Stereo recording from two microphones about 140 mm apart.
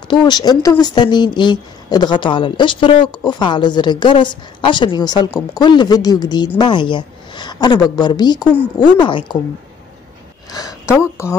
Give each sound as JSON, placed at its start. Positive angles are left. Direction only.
{"t": 0.1, "sound": "speech", "side_deg": 30}
{"t": 11.0, "sound": "speech", "side_deg": 20}